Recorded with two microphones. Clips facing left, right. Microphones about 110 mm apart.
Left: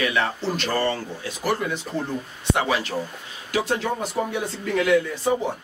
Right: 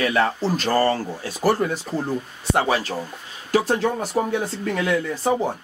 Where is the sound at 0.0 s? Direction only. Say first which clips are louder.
Right 3 dB; 40° right (ahead or behind).